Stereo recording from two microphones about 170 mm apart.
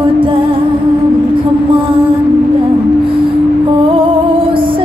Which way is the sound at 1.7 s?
30° right (ahead or behind).